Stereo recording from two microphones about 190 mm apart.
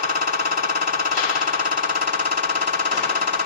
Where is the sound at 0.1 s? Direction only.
50° right (ahead or behind).